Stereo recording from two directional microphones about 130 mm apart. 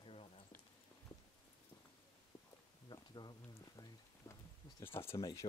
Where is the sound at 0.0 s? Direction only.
45° left (ahead or behind).